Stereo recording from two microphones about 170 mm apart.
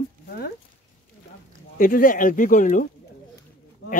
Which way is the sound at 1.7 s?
55° left (ahead or behind).